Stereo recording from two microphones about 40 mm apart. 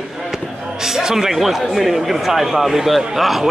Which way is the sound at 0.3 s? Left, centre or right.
Centre.